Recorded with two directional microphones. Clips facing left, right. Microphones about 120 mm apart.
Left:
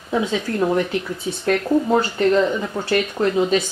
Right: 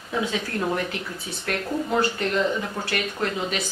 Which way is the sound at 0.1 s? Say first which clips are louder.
Left 5 dB; 25° left (ahead or behind).